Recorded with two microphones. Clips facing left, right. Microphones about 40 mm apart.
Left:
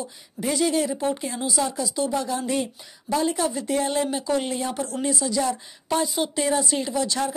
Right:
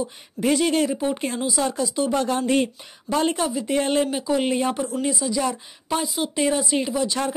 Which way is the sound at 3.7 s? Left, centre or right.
Right.